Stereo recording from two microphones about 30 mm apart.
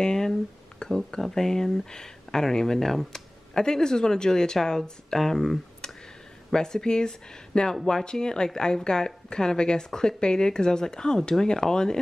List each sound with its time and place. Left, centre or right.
0.0 s a sound: centre
1.2 s speech: centre
6.5 s speech: left